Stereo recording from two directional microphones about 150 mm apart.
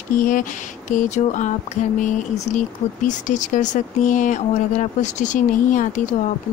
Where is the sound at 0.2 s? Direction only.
65° left (ahead or behind).